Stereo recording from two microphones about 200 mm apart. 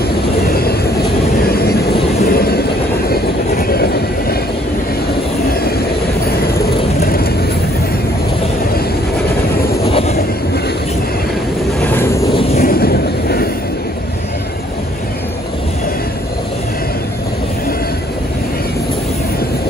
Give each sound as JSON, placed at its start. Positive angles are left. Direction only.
{"t": 0.5, "sound": "vehicle", "side_deg": 50}
{"t": 2.2, "sound": "train", "side_deg": 50}
{"t": 7.0, "sound": "vehicle", "side_deg": 50}
{"t": 9.8, "sound": "vehicle", "side_deg": 30}
{"t": 11.8, "sound": "a sound", "side_deg": 10}
{"t": 12.6, "sound": "vehicle", "side_deg": 50}